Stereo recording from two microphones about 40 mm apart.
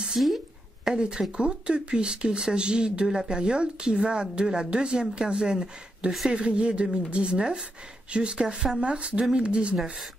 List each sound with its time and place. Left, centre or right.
0.2 s speech: centre